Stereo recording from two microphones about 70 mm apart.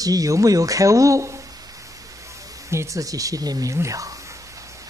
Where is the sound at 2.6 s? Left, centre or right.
Right.